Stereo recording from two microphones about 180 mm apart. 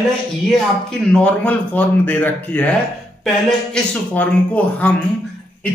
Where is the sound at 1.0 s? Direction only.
5° left (ahead or behind).